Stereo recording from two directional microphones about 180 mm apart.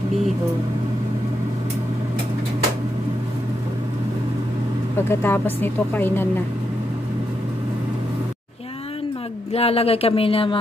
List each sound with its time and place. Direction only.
5.0 s speech: 15° left (ahead or behind)
9.5 s speech: 35° left (ahead or behind)